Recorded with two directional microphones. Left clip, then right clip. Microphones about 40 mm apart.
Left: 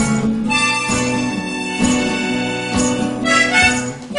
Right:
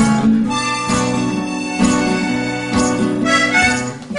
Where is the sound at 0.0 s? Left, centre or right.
Left.